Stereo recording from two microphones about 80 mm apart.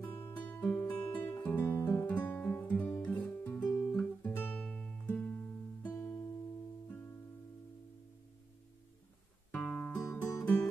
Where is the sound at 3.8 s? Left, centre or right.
Centre.